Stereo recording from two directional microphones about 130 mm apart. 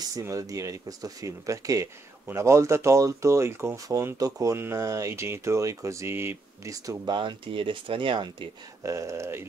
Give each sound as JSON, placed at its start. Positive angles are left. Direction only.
{"t": 0.1, "sound": "speech", "side_deg": -25}
{"t": 7.2, "sound": "speech", "side_deg": -40}
{"t": 8.8, "sound": "speech", "side_deg": -25}